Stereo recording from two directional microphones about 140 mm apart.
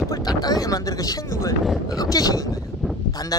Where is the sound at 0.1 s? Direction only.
30° left (ahead or behind).